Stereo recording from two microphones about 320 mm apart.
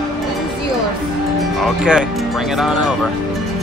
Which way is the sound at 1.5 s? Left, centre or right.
Centre.